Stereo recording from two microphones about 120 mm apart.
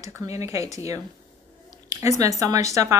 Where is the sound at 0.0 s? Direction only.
25° right (ahead or behind).